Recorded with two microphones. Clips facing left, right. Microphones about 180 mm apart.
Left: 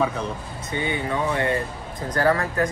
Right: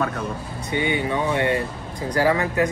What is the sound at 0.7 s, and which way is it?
Speech, 20° right (ahead or behind).